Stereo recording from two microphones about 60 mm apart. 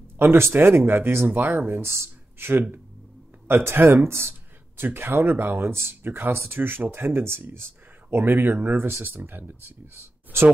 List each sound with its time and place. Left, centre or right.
0.2 s speech: right